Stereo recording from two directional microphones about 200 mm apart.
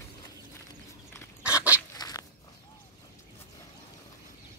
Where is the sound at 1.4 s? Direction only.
5° right (ahead or behind).